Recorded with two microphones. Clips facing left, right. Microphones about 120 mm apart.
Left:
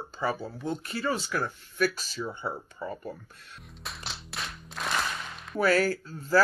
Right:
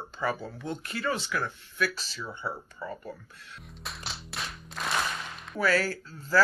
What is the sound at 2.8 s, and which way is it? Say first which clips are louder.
Speech: left 2 dB; 15° left (ahead or behind).